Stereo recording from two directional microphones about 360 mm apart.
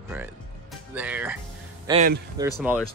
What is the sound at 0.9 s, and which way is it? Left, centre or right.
Speech, centre.